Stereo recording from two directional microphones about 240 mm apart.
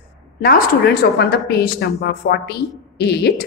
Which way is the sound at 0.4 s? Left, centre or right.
Left.